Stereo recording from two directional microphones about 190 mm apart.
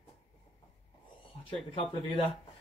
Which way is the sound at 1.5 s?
25° left (ahead or behind).